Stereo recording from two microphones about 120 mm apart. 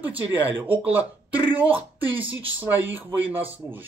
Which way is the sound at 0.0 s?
15° right (ahead or behind).